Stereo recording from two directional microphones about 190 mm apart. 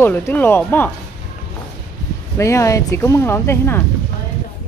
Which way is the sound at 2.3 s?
15° left (ahead or behind).